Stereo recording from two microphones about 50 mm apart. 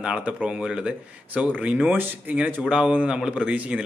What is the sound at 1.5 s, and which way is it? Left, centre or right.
Speech, right.